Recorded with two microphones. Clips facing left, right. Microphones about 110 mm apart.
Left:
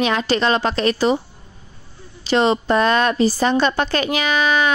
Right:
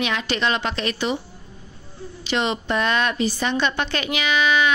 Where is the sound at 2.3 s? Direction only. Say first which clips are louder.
Left 7 dB; 35° left (ahead or behind).